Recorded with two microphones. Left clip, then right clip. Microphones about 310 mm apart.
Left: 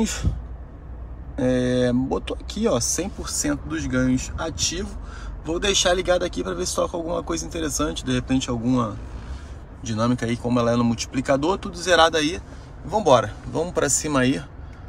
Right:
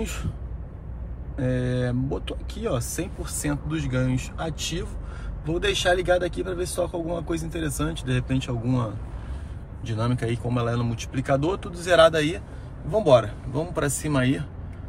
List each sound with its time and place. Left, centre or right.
1.3 s speech: centre